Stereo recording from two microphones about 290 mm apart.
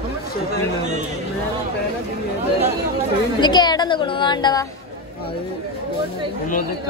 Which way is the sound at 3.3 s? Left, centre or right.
Centre.